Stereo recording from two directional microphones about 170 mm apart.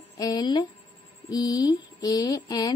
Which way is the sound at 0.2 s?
25° left (ahead or behind).